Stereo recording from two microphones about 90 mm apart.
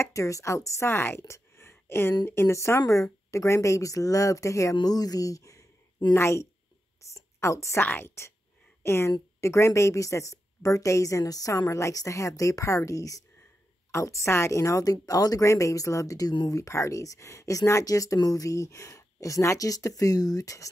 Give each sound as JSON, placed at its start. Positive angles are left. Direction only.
{"t": 0.0, "sound": "a woman's voice", "side_deg": 35}
{"t": 7.8, "sound": "a woman's voice", "side_deg": 20}